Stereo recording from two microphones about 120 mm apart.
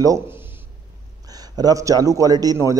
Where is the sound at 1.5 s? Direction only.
30° right (ahead or behind).